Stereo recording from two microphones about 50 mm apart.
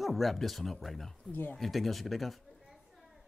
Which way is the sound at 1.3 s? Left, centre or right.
Left.